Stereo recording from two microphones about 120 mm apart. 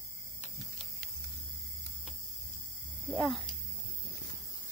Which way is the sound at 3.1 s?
5° left (ahead or behind).